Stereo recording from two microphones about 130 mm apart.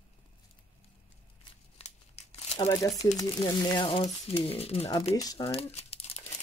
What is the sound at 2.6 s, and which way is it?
Speech, 25° left (ahead or behind).